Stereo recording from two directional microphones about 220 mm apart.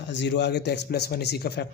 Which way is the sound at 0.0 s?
55° left (ahead or behind).